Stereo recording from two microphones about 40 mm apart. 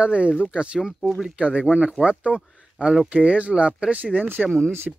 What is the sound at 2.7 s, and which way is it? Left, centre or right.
Speech, centre.